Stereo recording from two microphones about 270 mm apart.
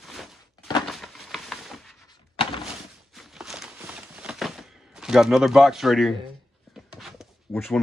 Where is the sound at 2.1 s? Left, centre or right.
Centre.